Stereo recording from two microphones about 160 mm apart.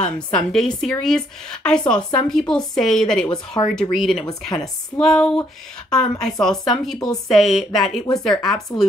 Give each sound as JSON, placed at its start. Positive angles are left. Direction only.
{"t": 0.5, "sound": "speech", "side_deg": 5}
{"t": 1.8, "sound": "speech", "side_deg": 25}
{"t": 2.2, "sound": "speech", "side_deg": 5}